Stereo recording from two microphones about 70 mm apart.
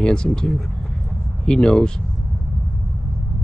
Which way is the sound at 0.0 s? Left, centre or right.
Centre.